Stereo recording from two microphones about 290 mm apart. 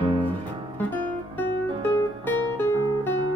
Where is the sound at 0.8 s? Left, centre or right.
Centre.